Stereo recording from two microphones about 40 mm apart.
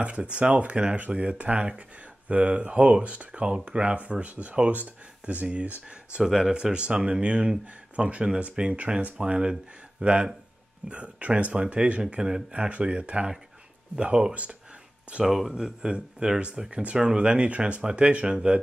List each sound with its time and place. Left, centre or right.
0.0 s speech: right
0.9 s speech: right
1.5 s speech: right
6.2 s speech: centre
6.5 s speech: right
12.2 s speech: centre
12.5 s speech: right
14.3 s speech: right
15.2 s speech: centre
15.5 s speech: centre